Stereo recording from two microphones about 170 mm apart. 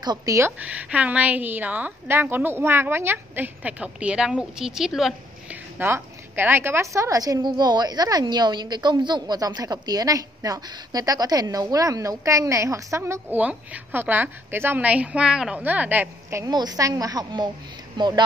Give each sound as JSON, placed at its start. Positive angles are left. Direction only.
{"t": 0.0, "sound": "a woman's voice", "side_deg": -20}